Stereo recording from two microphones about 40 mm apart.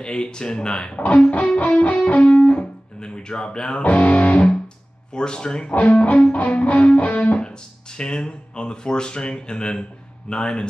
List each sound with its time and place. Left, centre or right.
0.0 s speech: left
0.9 s music: left
3.0 s speech: left
3.8 s music: left
5.1 s speech: left
5.8 s music: left
8.0 s speech: left